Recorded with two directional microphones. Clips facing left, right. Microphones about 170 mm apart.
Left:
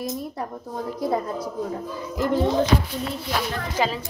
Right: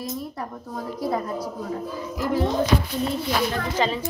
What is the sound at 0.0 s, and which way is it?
Speech, 20° left (ahead or behind).